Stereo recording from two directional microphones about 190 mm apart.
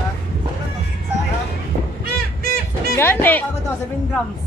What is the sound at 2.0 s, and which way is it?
Music, 55° right (ahead or behind).